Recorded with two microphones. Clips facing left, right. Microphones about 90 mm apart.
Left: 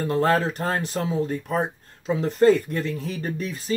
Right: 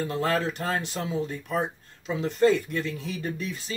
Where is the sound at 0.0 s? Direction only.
40° left (ahead or behind).